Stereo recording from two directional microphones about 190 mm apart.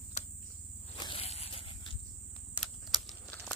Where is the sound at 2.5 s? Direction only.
Centre (ahead or behind).